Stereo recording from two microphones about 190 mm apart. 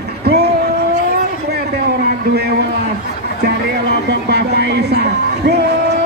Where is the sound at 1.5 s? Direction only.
55° right (ahead or behind).